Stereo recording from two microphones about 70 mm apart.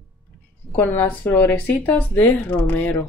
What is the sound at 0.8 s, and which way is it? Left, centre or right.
Speech, left.